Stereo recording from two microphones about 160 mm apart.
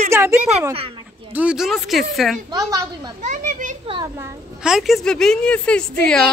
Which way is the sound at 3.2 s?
50° right (ahead or behind).